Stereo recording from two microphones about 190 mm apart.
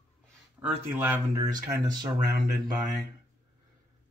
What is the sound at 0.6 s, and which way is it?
Speech, 10° right (ahead or behind).